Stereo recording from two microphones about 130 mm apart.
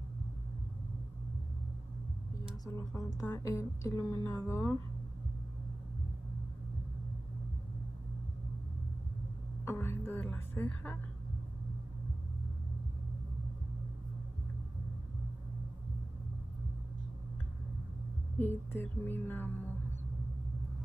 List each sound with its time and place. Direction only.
2.6 s a woman's voice: 25° left (ahead or behind)
9.7 s speech: 20° left (ahead or behind)
18.4 s speech: 15° left (ahead or behind)